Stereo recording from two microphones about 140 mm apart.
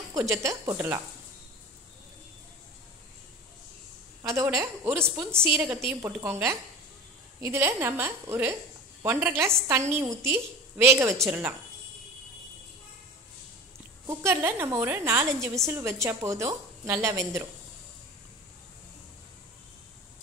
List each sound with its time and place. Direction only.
0.1 s a woman's voice: 25° right (ahead or behind)
4.2 s a woman's voice: 20° right (ahead or behind)
14.0 s a woman's voice: 15° right (ahead or behind)